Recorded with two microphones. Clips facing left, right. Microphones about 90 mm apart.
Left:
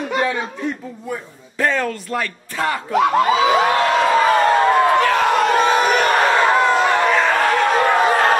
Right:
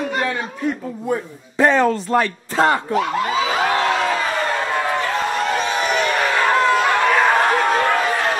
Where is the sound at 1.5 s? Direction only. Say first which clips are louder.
Right 5 dB; 20° right (ahead or behind).